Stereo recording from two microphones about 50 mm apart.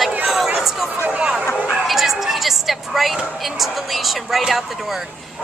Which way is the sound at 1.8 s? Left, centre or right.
Centre.